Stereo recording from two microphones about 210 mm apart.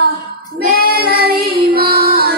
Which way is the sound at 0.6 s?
45° right (ahead or behind).